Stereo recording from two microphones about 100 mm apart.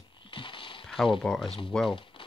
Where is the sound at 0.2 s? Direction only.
60° left (ahead or behind).